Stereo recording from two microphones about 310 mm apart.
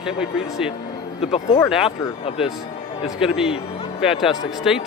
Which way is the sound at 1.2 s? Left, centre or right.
Centre.